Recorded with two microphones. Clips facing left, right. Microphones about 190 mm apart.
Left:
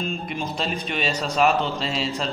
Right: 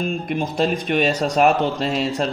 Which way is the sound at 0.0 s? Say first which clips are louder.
Right 5 dB; 55° right (ahead or behind).